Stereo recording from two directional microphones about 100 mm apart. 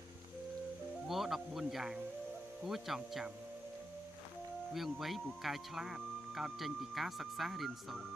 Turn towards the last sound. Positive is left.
turn(degrees=0)  # may be behind; listen again after turning